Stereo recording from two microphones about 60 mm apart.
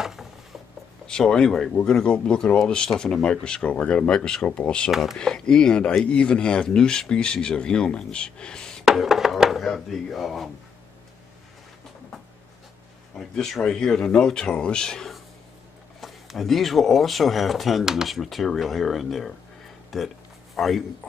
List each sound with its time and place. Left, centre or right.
0.0 s mechanisms: centre
1.0 s speech: centre
8.8 s chopping: centre
9.7 s speech: centre
13.1 s speech: centre
16.0 s a man's voice: centre